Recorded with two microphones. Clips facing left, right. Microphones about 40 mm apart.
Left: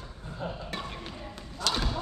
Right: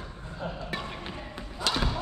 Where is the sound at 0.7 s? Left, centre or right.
Centre.